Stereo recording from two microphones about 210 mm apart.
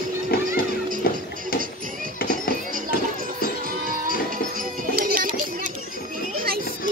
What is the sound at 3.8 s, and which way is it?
Music, 40° right (ahead or behind).